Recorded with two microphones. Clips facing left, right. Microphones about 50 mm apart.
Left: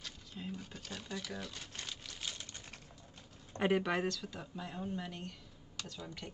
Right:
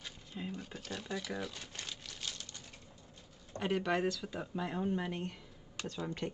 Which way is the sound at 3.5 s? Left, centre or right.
Centre.